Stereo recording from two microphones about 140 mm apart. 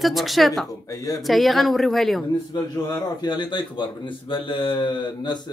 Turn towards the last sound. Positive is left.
turn(degrees=35)  # may be behind; listen again after turning